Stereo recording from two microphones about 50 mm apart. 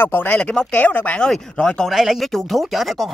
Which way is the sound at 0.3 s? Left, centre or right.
Left.